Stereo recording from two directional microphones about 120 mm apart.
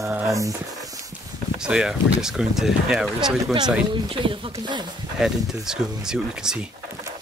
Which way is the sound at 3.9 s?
45° right (ahead or behind).